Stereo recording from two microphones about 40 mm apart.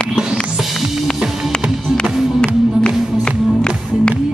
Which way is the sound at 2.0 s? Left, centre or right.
Left.